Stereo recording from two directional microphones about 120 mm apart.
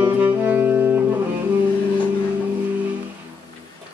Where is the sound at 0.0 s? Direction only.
15° right (ahead or behind).